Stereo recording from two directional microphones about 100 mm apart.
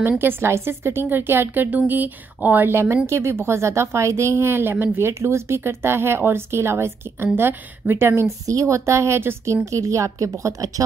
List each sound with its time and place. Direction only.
0.2 s a woman's voice: 25° right (ahead or behind)